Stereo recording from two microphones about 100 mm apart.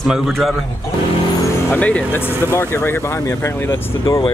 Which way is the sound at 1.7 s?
15° left (ahead or behind).